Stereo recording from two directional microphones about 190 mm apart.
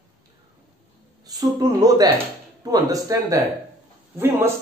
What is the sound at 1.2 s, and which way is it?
A man's voice, 20° right (ahead or behind).